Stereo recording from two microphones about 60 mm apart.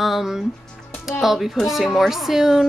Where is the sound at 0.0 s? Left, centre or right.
Centre.